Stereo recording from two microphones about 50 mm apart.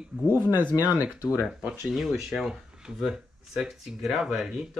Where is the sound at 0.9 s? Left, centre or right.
Right.